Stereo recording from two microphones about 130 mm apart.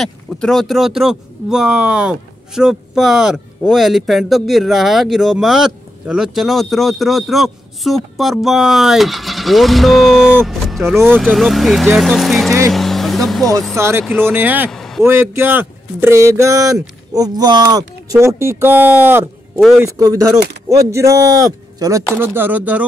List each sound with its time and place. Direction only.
0.0 s speech: 5° left (ahead or behind)
12.7 s vehicle: centre (ahead or behind)
13.7 s speech: 20° right (ahead or behind)
14.1 s a sound: 15° right (ahead or behind)
14.7 s speech: 5° left (ahead or behind)
15.0 s speech: 15° right (ahead or behind)
22.1 s a sound: 20° right (ahead or behind)